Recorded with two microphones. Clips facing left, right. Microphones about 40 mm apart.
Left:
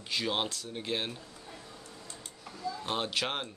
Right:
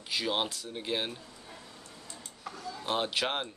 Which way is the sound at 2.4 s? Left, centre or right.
Right.